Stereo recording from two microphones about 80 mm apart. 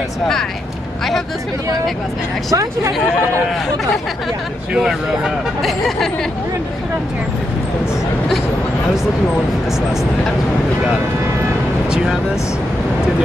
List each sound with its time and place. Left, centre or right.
2.5 s speech: right
4.7 s speech: centre